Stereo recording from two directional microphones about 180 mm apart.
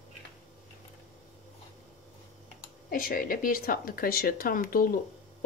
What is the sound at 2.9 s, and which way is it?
Speech, 50° left (ahead or behind).